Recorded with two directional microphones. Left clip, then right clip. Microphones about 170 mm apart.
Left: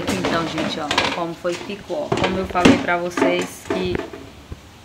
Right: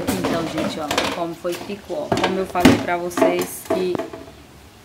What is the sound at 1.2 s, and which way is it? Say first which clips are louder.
Speech: left 1 dB; 10° right (ahead or behind).